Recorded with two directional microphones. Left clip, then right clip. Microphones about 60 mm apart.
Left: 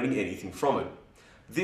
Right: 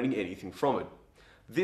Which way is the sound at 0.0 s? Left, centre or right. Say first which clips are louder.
Left 2 dB; left.